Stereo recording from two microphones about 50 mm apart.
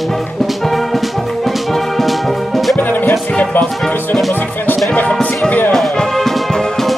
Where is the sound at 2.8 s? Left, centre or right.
Left.